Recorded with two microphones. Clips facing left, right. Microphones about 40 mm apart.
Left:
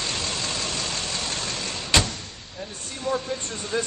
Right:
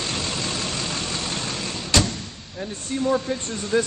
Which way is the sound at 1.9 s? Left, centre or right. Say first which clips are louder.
Right 1 dB; left.